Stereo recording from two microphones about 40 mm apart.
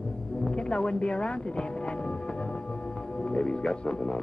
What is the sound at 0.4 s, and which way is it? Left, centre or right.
Speech, left.